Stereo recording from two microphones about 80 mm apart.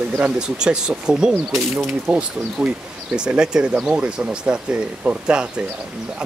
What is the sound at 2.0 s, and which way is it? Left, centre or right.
Speech, centre.